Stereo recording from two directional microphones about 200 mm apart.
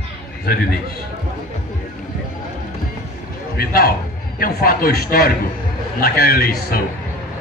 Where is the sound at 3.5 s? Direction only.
50° left (ahead or behind).